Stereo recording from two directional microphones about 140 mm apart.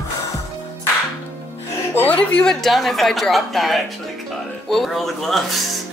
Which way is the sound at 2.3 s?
5° left (ahead or behind).